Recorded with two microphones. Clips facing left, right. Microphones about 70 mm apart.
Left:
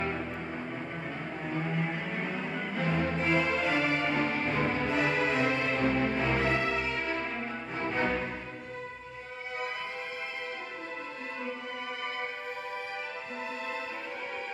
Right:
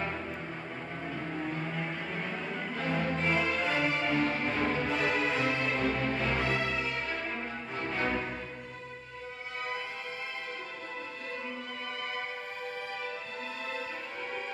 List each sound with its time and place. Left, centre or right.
2.1 s music: centre